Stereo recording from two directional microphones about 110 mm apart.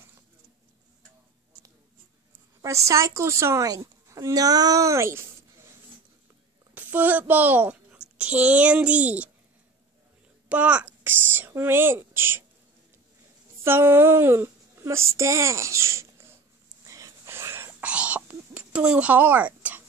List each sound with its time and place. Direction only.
2.6 s speech: 30° right (ahead or behind)
6.7 s a child's voice: 15° right (ahead or behind)
10.5 s a child's voice: 15° right (ahead or behind)
13.7 s speech: 20° right (ahead or behind)
16.8 s whispering: 30° right (ahead or behind); by 19.8 s 15° right (ahead or behind)